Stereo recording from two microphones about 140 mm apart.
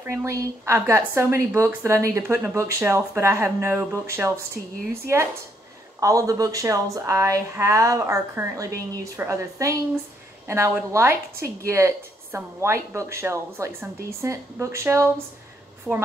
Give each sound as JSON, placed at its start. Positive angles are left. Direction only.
{"t": 0.0, "sound": "a woman's voice", "side_deg": -20}